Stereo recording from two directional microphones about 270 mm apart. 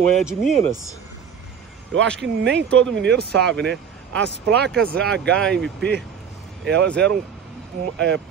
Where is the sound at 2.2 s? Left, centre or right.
Right.